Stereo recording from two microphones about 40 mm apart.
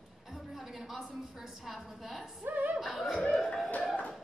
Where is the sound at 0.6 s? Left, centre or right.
Centre.